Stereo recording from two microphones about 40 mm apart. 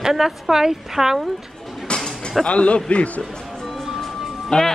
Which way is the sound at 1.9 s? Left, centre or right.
Left.